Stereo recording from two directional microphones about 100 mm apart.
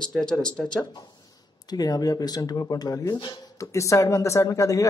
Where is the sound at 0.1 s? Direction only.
5° left (ahead or behind).